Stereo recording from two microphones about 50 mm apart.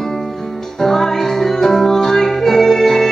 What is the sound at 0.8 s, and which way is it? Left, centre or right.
Music, centre.